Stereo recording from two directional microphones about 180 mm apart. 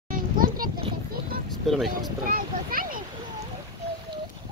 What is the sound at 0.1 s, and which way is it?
Children playing, 50° right (ahead or behind).